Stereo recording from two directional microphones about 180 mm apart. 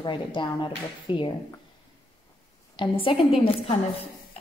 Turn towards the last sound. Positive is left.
turn(degrees=30)  # may be behind; listen again after turning